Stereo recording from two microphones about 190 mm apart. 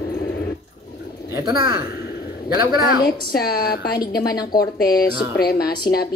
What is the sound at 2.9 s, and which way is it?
A woman's voice, 55° left (ahead or behind).